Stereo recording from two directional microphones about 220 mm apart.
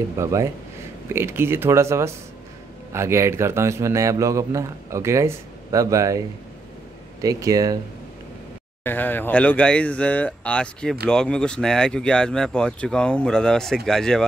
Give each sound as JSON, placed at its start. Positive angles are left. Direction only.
{"t": 0.2, "sound": "a man's voice", "side_deg": -15}
{"t": 8.8, "sound": "speech", "side_deg": 10}